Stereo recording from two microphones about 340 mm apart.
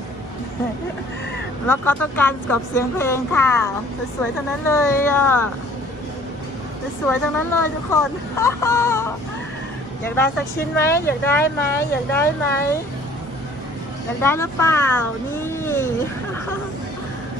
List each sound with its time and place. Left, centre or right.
1.7 s speech: centre
4.6 s speech: centre
7.1 s speech: centre
14.2 s speech: centre